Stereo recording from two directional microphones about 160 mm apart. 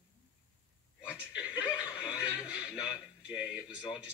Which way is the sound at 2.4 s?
5° right (ahead or behind).